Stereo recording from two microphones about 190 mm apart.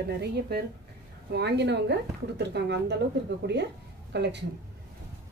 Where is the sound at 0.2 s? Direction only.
55° right (ahead or behind).